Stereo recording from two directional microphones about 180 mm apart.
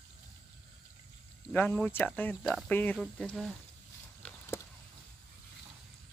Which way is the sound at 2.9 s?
Centre (ahead or behind).